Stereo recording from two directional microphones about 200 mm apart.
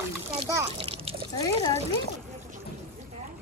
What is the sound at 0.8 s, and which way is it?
Water, 25° right (ahead or behind).